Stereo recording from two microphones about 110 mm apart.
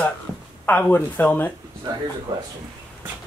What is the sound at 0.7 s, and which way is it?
Speech, 15° left (ahead or behind).